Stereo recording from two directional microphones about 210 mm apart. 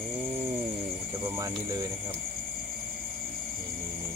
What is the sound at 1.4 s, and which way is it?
Speech, 15° right (ahead or behind).